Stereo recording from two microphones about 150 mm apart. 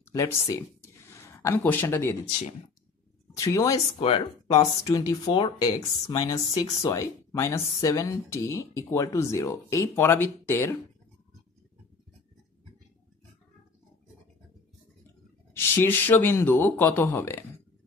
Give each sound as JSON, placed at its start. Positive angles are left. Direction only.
{"t": 0.1, "sound": "speech", "side_deg": 20}
{"t": 3.3, "sound": "speech", "side_deg": 20}
{"t": 5.2, "sound": "speech", "side_deg": 35}
{"t": 5.6, "sound": "speech", "side_deg": 25}
{"t": 15.5, "sound": "speech", "side_deg": 15}